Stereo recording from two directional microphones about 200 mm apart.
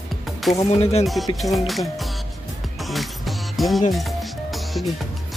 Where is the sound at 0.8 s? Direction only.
30° left (ahead or behind).